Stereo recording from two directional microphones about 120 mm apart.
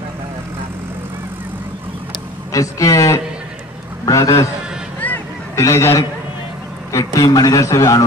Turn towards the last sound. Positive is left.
turn(degrees=25)  # may be behind; listen again after turning